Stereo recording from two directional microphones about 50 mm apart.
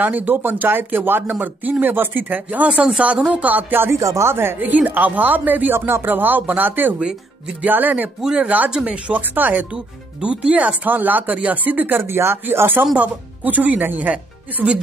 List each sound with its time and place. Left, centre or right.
0.0 s speech: right
3.9 s speech: right
4.3 s speech: right
4.6 s speech: right
5.8 s speech: right
8.2 s speech: centre
9.3 s speech: right
10.2 s speech: right
10.9 s speech: right
12.0 s speech: right
12.9 s speech: right